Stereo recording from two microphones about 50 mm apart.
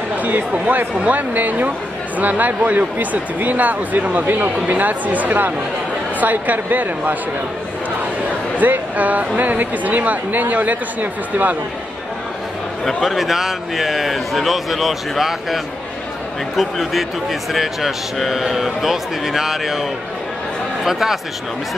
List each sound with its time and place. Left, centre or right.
0.2 s speech: right
8.5 s speech: right
12.8 s speech: centre